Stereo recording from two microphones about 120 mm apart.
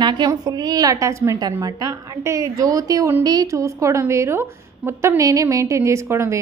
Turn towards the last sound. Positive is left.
turn(degrees=-25)  # may be behind; listen again after turning